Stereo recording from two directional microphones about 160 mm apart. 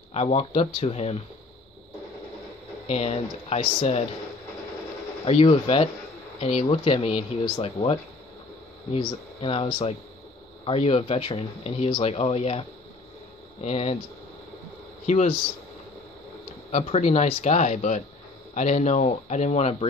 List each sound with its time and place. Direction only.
0.1 s speech: 40° left (ahead or behind)
2.9 s speech: 40° left (ahead or behind)
5.2 s speech: 35° left (ahead or behind)
7.4 s speech: 25° left (ahead or behind)
8.9 s speech: 35° left (ahead or behind)
15.0 s speech: 45° left (ahead or behind)
16.7 s speech: 40° left (ahead or behind)